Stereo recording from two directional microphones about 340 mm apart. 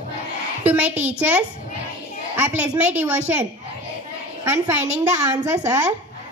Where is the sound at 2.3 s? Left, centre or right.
Centre.